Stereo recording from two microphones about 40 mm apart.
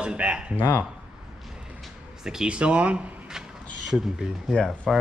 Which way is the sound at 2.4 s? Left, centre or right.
Right.